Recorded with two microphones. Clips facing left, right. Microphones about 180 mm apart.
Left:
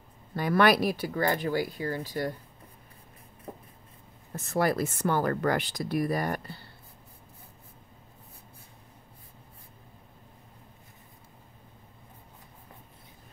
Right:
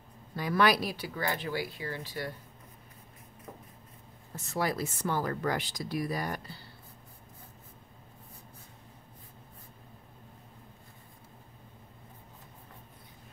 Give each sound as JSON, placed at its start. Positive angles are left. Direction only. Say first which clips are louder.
{"t": 0.4, "sound": "speech", "louder": "left 4 dB", "side_deg": 55}
{"t": 3.5, "sound": "a sound", "louder": "left 5 dB", "side_deg": 30}
{"t": 4.5, "sound": "speech", "louder": "left 5 dB", "side_deg": 55}